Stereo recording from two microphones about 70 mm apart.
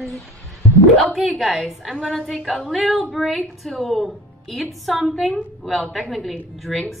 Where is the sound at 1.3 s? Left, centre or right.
Centre.